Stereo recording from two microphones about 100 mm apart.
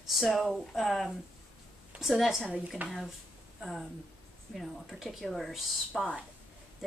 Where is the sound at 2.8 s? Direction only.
20° right (ahead or behind).